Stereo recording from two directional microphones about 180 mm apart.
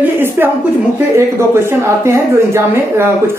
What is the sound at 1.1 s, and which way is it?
Speech, 15° right (ahead or behind).